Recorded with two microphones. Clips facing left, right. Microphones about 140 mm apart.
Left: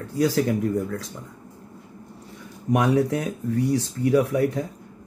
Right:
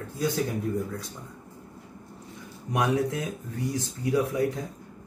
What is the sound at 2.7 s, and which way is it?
Speech, 65° left (ahead or behind).